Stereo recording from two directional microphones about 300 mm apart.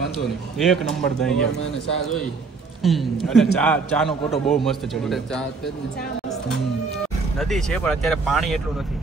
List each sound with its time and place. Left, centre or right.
0.6 s a man's voice: centre